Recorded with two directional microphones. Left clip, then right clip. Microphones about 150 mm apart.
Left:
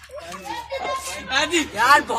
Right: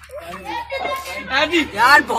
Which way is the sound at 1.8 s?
50° left (ahead or behind).